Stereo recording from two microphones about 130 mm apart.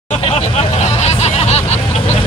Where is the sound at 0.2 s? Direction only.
50° left (ahead or behind).